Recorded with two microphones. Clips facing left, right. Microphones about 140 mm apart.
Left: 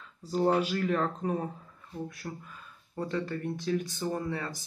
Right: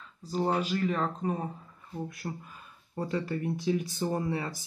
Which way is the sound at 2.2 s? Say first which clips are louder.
Right 2 dB; 20° right (ahead or behind).